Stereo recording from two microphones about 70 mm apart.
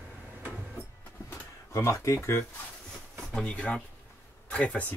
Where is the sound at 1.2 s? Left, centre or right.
Left.